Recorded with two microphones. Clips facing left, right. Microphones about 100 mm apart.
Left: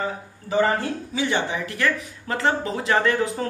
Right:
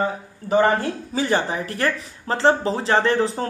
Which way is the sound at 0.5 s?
30° right (ahead or behind).